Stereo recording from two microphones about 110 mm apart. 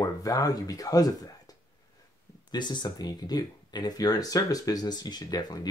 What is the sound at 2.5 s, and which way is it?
Speech, 40° left (ahead or behind).